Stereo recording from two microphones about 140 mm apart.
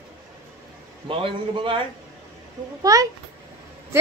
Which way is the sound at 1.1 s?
40° right (ahead or behind).